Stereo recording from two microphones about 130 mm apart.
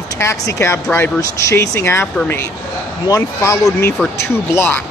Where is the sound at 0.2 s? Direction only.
20° left (ahead or behind).